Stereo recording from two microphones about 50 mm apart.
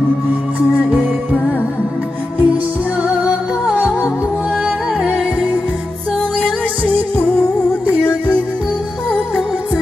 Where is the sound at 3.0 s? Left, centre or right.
Right.